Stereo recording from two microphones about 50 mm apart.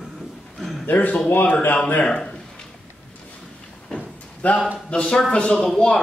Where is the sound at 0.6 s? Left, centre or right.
Centre.